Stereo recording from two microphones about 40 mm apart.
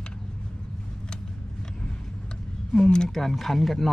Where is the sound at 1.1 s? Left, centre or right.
Centre.